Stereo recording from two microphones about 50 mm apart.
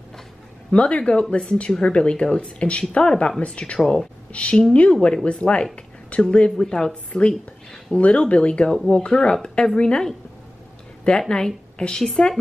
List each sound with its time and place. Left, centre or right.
0.7 s speech: left
3.8 s speech: centre
4.3 s speech: left
7.1 s speech: left
11.1 s a woman's voice: centre